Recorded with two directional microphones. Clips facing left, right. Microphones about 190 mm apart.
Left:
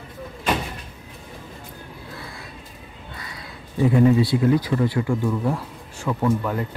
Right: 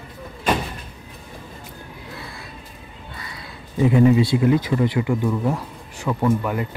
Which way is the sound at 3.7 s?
15° right (ahead or behind).